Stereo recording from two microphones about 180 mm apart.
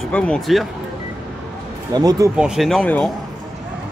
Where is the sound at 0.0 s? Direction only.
5° left (ahead or behind).